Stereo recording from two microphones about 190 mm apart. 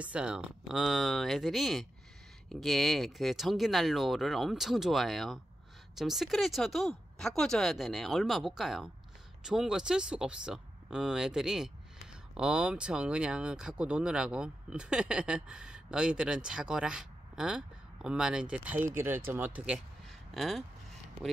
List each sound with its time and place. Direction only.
0.0 s speech: 5° right (ahead or behind)